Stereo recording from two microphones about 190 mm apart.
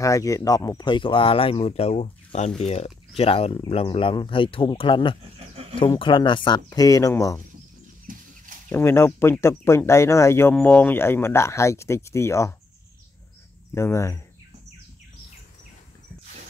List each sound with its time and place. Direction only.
0.0 s speech: 15° left (ahead or behind)
5.4 s a sound: 30° right (ahead or behind)
5.8 s speech: 25° left (ahead or behind)
8.1 s a sound: 45° right (ahead or behind)
8.6 s speech: 10° left (ahead or behind)
13.7 s speech: 15° left (ahead or behind)